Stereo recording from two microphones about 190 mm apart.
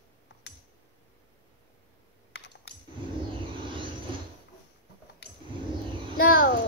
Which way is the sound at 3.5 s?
25° right (ahead or behind).